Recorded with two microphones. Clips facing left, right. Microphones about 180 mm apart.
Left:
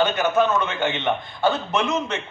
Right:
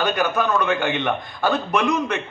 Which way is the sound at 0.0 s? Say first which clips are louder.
Left 2 dB; 25° left (ahead or behind).